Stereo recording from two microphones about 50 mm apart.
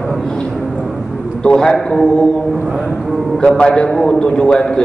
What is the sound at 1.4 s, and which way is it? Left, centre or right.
Speech, centre.